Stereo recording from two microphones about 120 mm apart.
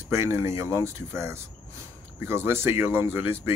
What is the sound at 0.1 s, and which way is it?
Speech, 25° right (ahead or behind).